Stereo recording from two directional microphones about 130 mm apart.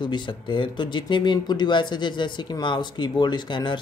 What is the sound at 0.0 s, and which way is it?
Speech, 40° left (ahead or behind).